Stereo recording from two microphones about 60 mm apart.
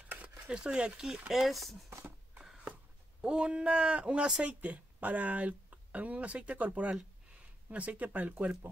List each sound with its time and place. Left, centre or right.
0.5 s speech: centre
1.3 s speech: centre
1.9 s a sound: right
3.2 s speech: centre